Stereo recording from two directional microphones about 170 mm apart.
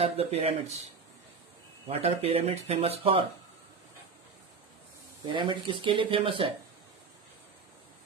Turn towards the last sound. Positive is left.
turn(degrees=-30)  # may be behind; listen again after turning